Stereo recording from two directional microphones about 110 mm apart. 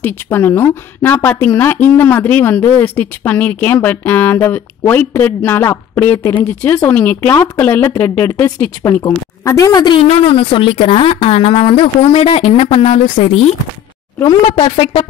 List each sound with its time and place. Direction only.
0.0 s a woman's voice: 20° left (ahead or behind)
8.8 s a woman's voice: 35° left (ahead or behind)
9.7 s a woman's voice: 40° left (ahead or behind)
10.0 s a woman's voice: 60° left (ahead or behind)